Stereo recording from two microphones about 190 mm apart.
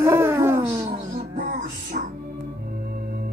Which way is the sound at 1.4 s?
40° right (ahead or behind).